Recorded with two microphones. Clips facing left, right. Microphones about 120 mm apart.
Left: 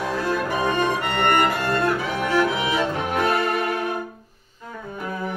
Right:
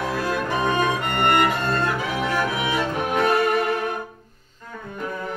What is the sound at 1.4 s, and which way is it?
Music, 20° left (ahead or behind).